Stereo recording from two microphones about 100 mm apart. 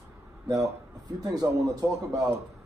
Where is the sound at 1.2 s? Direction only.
40° right (ahead or behind).